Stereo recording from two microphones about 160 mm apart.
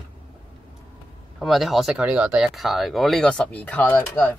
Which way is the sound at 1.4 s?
Centre (ahead or behind).